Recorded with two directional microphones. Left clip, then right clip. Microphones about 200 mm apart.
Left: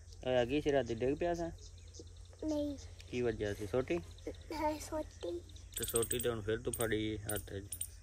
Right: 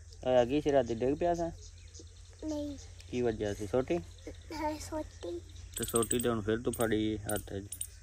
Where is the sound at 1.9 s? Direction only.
25° left (ahead or behind).